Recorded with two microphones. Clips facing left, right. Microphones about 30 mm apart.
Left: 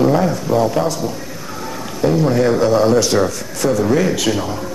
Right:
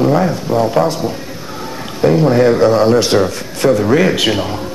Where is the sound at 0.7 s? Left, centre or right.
Right.